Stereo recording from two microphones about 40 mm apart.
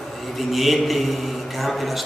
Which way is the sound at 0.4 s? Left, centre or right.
Centre.